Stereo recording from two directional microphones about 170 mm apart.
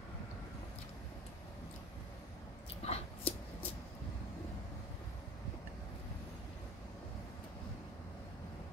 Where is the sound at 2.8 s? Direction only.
35° left (ahead or behind).